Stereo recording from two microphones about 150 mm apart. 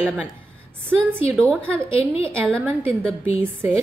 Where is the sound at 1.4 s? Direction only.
10° left (ahead or behind).